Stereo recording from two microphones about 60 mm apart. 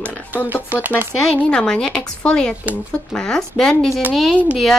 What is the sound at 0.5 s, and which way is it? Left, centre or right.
Speech, right.